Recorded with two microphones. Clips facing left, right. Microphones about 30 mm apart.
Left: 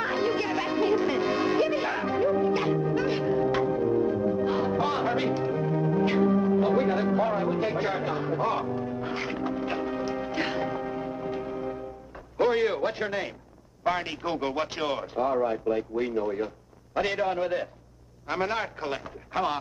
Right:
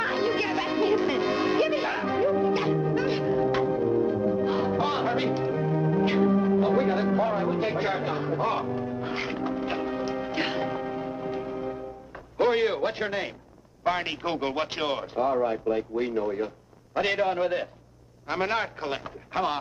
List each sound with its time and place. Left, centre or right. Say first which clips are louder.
0.0 s music: right 1 dB; centre
12.4 s radio: right 1 dB; centre
13.9 s a man's voice: right 1 dB; centre
17.0 s a man's voice: right 2 dB; centre